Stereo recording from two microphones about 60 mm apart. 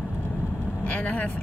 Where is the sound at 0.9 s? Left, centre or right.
Left.